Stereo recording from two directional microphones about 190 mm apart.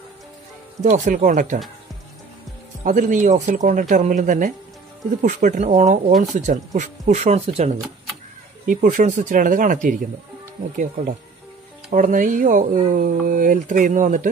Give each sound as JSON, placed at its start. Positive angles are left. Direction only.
{"t": 0.8, "sound": "speech", "side_deg": -40}
{"t": 2.8, "sound": "speech", "side_deg": -40}
{"t": 11.9, "sound": "speech", "side_deg": -45}